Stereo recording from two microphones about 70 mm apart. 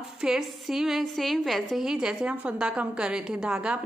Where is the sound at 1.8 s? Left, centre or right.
Centre.